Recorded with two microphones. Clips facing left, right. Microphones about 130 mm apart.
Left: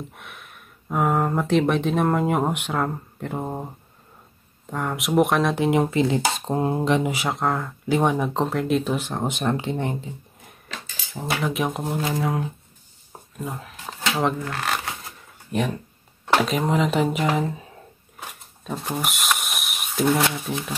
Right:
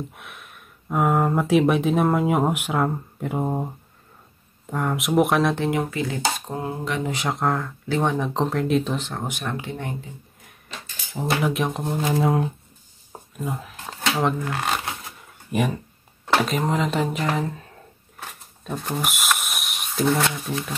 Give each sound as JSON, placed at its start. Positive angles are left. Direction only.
{"t": 0.1, "sound": "speech", "side_deg": 0}
{"t": 5.6, "sound": "speech", "side_deg": 25}
{"t": 7.0, "sound": "speech", "side_deg": 5}
{"t": 9.2, "sound": "speech", "side_deg": 25}
{"t": 11.2, "sound": "speech", "side_deg": 0}
{"t": 13.4, "sound": "a sound", "side_deg": 0}
{"t": 14.4, "sound": "speech", "side_deg": -10}
{"t": 18.6, "sound": "a sound", "side_deg": 0}